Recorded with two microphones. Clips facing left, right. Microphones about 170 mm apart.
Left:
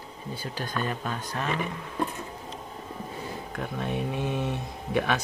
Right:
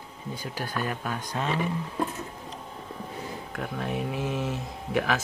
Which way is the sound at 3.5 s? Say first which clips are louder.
Even; centre (ahead or behind).